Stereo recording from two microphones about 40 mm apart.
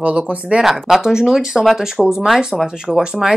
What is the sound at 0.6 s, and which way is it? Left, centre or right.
Speech, centre.